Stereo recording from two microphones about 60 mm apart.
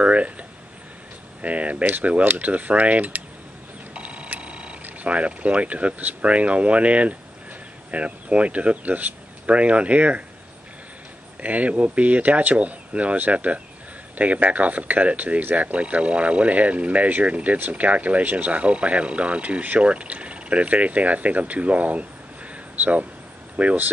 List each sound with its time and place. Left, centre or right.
0.0 s a sound: right
1.4 s speech: right
11.4 s speech: right